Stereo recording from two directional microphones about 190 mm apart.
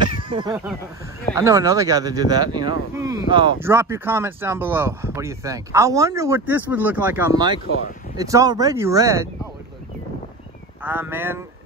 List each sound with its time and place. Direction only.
0.3 s a sound: 25° right (ahead or behind)
1.3 s speech: 15° right (ahead or behind)
2.9 s a sound: 15° right (ahead or behind)
3.3 s speech: 25° right (ahead or behind)
3.6 s speech: 10° right (ahead or behind)
10.8 s speech: 10° right (ahead or behind)